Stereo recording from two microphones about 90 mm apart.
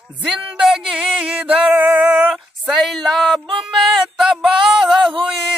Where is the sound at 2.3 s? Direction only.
5° right (ahead or behind).